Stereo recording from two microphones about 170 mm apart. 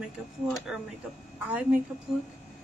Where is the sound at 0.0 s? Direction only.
Centre (ahead or behind).